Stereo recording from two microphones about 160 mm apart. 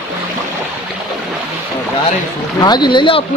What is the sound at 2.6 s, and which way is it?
Speech, 25° left (ahead or behind).